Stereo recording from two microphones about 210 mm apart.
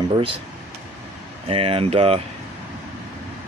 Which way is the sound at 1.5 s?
25° right (ahead or behind).